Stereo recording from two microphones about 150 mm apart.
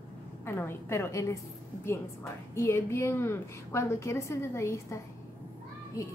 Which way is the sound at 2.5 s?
15° left (ahead or behind).